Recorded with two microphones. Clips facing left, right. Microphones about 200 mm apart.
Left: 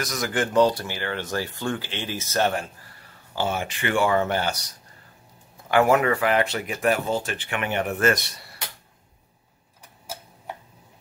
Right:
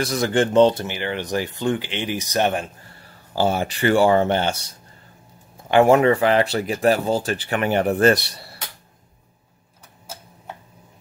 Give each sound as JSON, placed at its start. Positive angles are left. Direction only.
{"t": 0.0, "sound": "speech", "side_deg": -30}
{"t": 3.3, "sound": "speech", "side_deg": -35}